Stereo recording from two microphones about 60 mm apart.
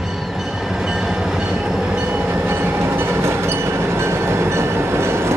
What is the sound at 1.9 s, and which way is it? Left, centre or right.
Train, right.